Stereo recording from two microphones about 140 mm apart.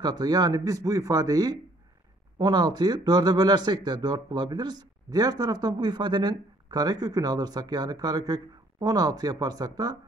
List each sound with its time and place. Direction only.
0.0 s speech: 30° right (ahead or behind)